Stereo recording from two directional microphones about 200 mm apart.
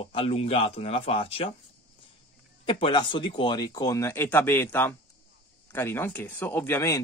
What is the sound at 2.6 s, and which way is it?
Speech, 25° left (ahead or behind).